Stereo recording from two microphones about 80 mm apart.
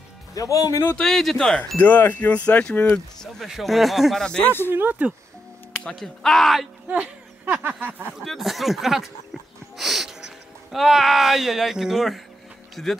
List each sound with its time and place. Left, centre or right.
0.3 s speech: left
0.9 s speech: centre
1.8 s speech: left
3.3 s speech: centre
4.6 s speech: right
5.9 s speech: centre
6.9 s speech: centre
8.2 s speech: centre